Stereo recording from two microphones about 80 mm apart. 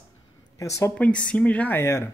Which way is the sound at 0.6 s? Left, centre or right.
Left.